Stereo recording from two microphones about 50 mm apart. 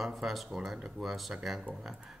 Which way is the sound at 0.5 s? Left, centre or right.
Centre.